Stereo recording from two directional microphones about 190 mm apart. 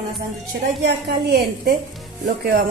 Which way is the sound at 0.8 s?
60° right (ahead or behind).